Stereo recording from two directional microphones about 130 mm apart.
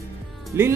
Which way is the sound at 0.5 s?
20° right (ahead or behind).